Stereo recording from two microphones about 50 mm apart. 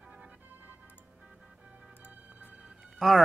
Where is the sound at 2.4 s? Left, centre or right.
Right.